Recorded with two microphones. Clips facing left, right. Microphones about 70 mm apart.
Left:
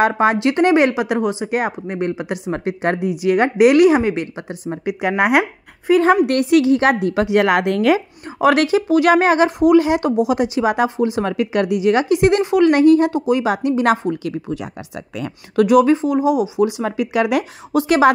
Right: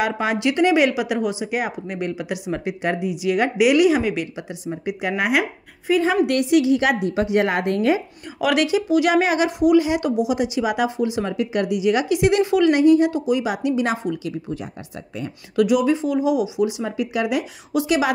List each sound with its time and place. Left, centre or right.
0.0 s speech: left
4.0 s speech: left
7.1 s a woman's voice: left
8.4 s speech: left
11.2 s speech: left
12.6 s speech: left
15.5 s speech: left
16.0 s speech: left
16.5 s speech: left